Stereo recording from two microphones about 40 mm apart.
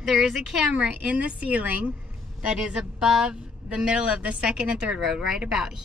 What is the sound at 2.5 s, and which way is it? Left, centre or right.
Speech, right.